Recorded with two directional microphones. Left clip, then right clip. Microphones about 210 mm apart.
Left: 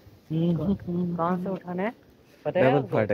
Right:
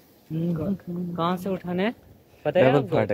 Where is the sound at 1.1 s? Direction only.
60° right (ahead or behind).